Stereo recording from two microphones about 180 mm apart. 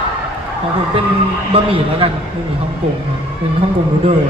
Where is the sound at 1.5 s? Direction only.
30° right (ahead or behind).